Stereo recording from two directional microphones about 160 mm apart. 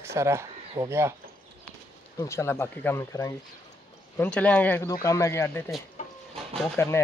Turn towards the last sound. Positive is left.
turn(degrees=5)  # may be behind; listen again after turning